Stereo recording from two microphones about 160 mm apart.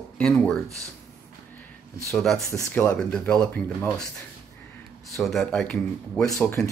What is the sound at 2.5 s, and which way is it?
Speech, 20° left (ahead or behind).